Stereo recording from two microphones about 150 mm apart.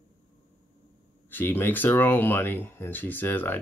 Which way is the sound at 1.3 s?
15° left (ahead or behind).